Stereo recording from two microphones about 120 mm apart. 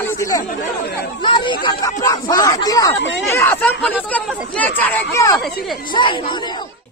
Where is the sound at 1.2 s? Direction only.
40° left (ahead or behind); by 5.0 s 15° left (ahead or behind).